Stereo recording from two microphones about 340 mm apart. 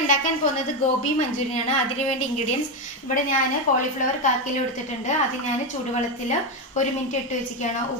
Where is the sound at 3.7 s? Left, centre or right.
Left.